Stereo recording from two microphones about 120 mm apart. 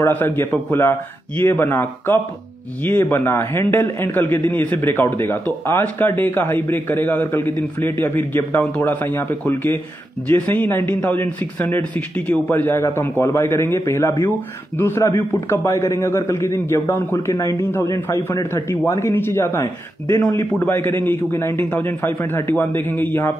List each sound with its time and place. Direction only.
0.0 s a man's voice: 15° left (ahead or behind)
20.2 s a man's voice: 35° left (ahead or behind)
20.5 s a man's voice: 15° left (ahead or behind)